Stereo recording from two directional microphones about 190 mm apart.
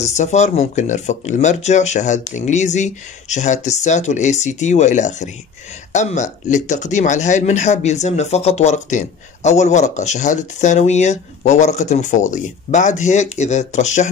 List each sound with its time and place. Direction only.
0.0 s speech: 40° left (ahead or behind)